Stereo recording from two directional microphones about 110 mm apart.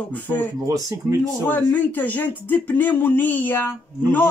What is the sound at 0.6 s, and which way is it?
Speech, 30° right (ahead or behind).